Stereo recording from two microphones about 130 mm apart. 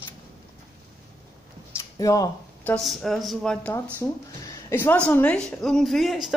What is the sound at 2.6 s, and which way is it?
A man's voice, centre (ahead or behind).